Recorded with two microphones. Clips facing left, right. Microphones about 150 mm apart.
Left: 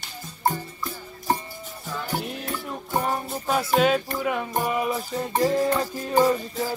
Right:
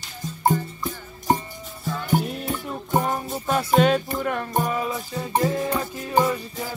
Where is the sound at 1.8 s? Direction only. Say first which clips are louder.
Right 6 dB; 5° left (ahead or behind).